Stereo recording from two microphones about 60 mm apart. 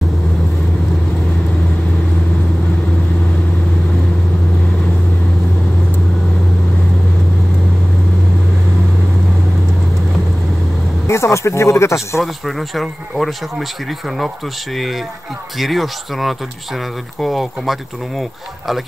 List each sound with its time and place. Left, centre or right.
11.1 s speech: left
12.2 s speech: centre